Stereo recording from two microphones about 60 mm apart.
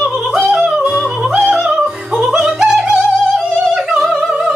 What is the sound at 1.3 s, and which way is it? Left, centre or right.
Music, right.